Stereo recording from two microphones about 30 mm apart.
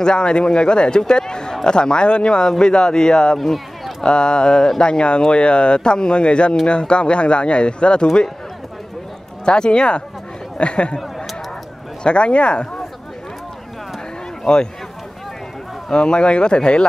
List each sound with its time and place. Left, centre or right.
0.0 s a man's voice: left
3.3 s speech: centre
4.0 s speech: left
9.4 s speech: left
12.0 s speech: left
14.4 s speech: left
15.9 s speech: left